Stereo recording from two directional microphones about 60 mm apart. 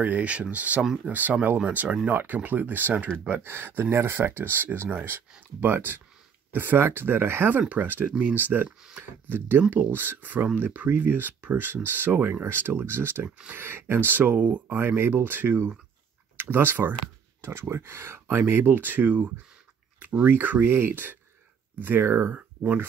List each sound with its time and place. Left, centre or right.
0.0 s speech: right
3.3 s speech: right
14.8 s speech: right
22.0 s speech: right
22.3 s speech: right